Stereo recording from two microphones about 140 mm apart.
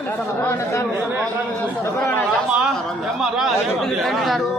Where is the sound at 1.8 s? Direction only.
15° left (ahead or behind).